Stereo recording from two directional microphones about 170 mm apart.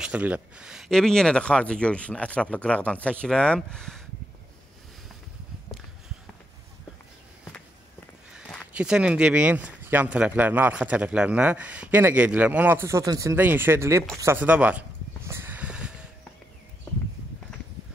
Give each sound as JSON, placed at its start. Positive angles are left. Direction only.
{"t": 0.0, "sound": "speech", "side_deg": -5}
{"t": 8.3, "sound": "speech", "side_deg": -5}
{"t": 14.1, "sound": "a sound", "side_deg": -15}